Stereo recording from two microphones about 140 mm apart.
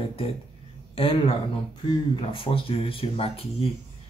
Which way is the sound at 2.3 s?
40° left (ahead or behind).